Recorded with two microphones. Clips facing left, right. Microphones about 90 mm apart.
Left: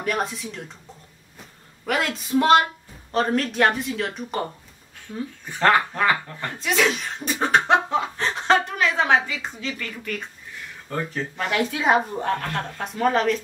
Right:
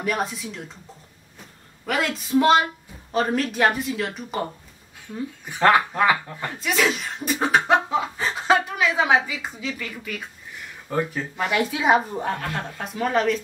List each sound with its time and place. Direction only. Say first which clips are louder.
0.0 s speech: even; centre (ahead or behind)
1.9 s speech: even; centre (ahead or behind)
5.5 s speech: right 1 dB; 10° right (ahead or behind)